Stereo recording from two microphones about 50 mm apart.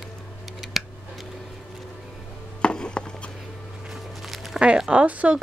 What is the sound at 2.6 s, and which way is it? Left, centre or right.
Chop, centre.